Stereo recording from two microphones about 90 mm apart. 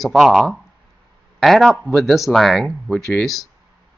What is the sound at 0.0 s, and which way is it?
Speech, centre (ahead or behind).